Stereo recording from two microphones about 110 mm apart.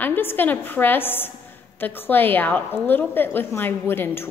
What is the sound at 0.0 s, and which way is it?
A woman's voice, 20° left (ahead or behind).